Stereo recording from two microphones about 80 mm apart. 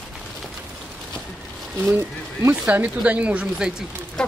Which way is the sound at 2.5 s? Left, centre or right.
Centre.